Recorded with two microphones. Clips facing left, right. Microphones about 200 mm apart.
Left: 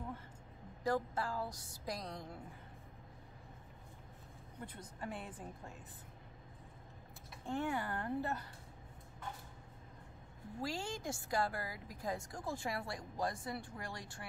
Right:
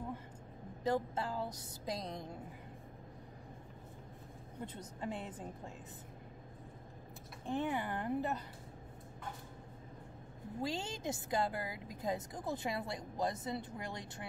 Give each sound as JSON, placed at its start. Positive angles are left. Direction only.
{"t": 0.8, "sound": "a woman's voice", "side_deg": -20}
{"t": 4.6, "sound": "a woman's voice", "side_deg": -20}
{"t": 7.4, "sound": "a woman's voice", "side_deg": -20}
{"t": 10.6, "sound": "a woman's voice", "side_deg": -20}